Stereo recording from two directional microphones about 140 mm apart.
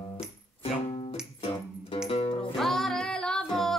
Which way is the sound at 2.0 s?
45° left (ahead or behind).